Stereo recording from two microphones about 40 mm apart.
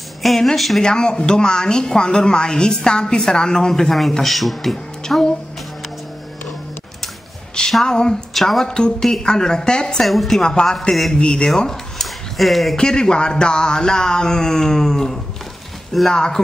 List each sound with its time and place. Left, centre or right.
0.2 s speech: centre
0.8 s speech: centre
4.2 s speech: centre
5.0 s speech: centre
7.8 s speech: centre
8.3 s speech: centre
8.6 s speech: centre
10.0 s speech: centre; by 11.5 s left
11.5 s speech: centre
12.4 s speech: centre
12.7 s speech: centre